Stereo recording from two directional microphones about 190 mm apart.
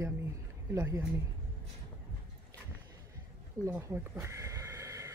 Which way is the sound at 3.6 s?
15° right (ahead or behind).